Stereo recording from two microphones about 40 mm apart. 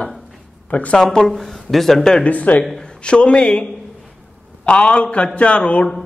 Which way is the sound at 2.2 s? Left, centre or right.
Left.